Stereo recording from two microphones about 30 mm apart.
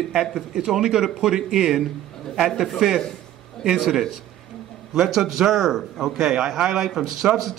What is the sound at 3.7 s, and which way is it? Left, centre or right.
Speech, centre.